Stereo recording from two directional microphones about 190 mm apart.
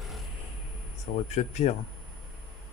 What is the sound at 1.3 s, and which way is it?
Speech, 35° left (ahead or behind).